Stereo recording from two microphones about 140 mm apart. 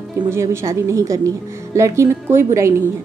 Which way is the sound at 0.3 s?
20° right (ahead or behind).